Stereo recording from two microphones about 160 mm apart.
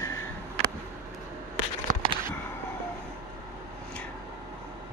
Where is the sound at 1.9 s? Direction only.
55° right (ahead or behind).